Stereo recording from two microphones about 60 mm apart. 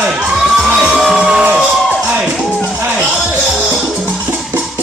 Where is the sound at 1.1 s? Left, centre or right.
Centre.